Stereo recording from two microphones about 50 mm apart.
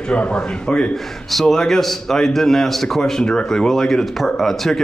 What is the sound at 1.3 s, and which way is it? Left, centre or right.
A man's voice, centre.